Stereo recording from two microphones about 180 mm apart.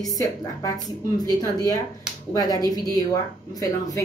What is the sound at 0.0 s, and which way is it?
Speech, 20° left (ahead or behind).